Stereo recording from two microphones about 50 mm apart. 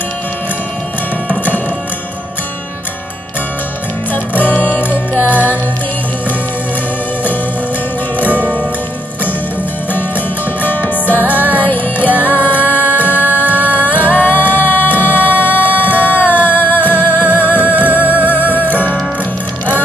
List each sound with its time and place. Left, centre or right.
4.1 s music: left
8.3 s music: right
10.6 s music: left
11.3 s music: right
11.6 s music: left
13.1 s music: right
13.7 s music: left